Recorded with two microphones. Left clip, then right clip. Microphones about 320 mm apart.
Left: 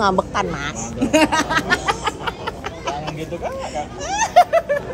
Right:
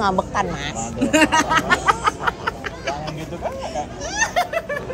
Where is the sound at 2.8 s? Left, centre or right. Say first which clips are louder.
Left 1 dB; centre.